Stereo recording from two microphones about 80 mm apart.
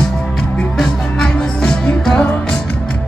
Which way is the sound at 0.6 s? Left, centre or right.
Centre.